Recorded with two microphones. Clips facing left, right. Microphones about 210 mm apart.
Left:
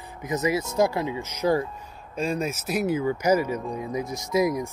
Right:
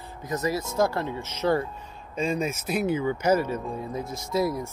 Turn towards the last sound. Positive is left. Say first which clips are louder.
# left 3 dB
turn(degrees=20)  # may be behind; listen again after turning